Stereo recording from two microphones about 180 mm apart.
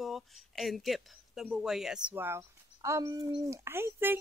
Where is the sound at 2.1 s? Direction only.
15° right (ahead or behind).